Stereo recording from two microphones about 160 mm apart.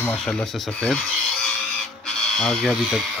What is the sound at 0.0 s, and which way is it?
Speech, 5° left (ahead or behind).